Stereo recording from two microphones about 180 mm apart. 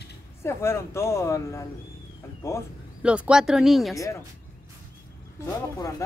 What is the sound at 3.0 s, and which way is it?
Speech, 5° right (ahead or behind).